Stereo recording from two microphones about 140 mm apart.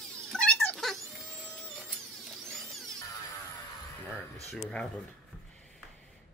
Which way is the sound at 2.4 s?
Centre (ahead or behind).